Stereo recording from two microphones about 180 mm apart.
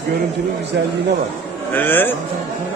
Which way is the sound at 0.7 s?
70° right (ahead or behind).